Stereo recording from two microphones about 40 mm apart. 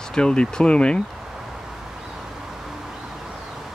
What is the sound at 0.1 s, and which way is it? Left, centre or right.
Speech, left.